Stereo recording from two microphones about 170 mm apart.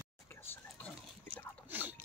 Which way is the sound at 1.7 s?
10° right (ahead or behind).